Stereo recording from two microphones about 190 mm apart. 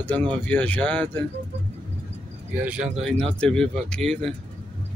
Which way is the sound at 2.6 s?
5° right (ahead or behind).